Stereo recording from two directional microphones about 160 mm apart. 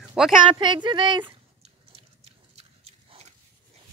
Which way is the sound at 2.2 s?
40° right (ahead or behind).